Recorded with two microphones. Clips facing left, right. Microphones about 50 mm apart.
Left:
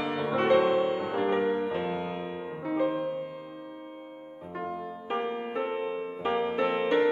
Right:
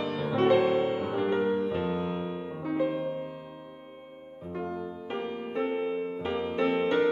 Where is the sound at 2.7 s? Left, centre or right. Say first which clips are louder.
Left 1 dB; centre.